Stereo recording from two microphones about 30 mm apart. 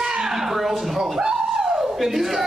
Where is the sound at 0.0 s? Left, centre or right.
Right.